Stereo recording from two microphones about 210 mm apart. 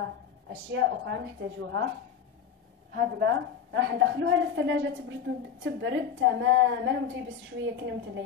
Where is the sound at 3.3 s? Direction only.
60° right (ahead or behind).